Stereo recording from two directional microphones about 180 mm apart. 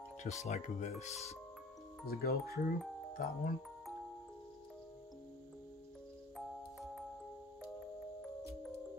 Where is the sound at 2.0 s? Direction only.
60° left (ahead or behind).